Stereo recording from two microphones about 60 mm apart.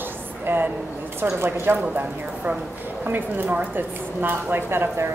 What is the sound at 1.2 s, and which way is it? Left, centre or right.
Speech, right.